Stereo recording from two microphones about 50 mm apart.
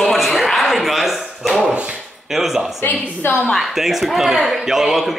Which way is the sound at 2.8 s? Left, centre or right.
Left.